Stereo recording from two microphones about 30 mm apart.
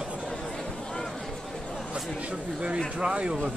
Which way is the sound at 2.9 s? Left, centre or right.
Right.